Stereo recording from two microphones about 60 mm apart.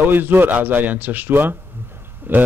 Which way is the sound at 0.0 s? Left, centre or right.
Right.